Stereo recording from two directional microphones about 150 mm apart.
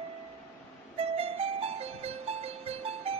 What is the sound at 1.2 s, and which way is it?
Music, 40° right (ahead or behind).